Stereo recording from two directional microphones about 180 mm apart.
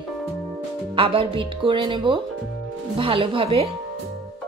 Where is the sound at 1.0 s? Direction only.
30° right (ahead or behind).